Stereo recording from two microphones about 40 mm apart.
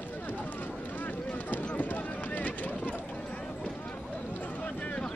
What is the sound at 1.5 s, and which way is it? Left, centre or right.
Clip-clop, left.